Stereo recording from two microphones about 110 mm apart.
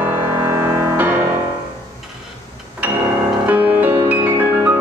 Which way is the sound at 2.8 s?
15° right (ahead or behind).